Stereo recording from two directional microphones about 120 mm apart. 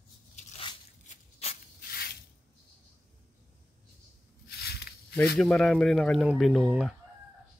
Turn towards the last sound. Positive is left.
turn(degrees=-5)  # may be behind; listen again after turning